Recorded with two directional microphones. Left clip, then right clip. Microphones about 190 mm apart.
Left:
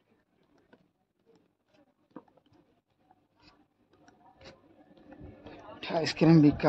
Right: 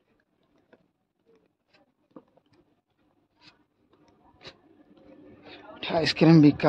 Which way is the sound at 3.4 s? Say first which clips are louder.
Right 5 dB; 40° right (ahead or behind).